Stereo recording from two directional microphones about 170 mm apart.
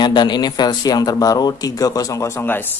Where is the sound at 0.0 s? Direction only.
25° left (ahead or behind).